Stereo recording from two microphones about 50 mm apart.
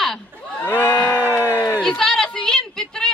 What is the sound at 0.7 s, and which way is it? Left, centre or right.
Crowd, left.